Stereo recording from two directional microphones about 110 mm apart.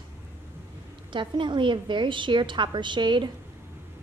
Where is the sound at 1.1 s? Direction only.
45° right (ahead or behind).